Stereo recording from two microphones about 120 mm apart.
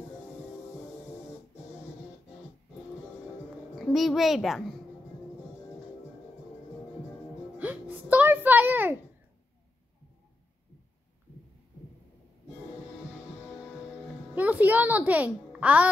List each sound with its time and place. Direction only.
3.7 s a child's voice: centre (ahead or behind)
7.5 s a sound: 15° right (ahead or behind)
14.3 s music: 15° right (ahead or behind)